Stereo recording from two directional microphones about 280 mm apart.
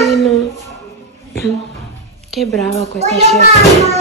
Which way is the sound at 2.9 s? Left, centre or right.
Right.